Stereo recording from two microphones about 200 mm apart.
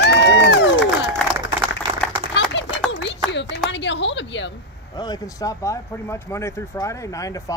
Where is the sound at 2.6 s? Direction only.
65° left (ahead or behind).